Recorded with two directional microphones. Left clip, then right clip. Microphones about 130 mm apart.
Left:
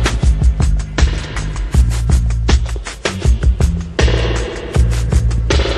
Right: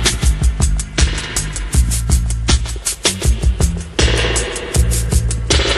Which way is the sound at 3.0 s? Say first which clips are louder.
Right 2 dB; 25° right (ahead or behind).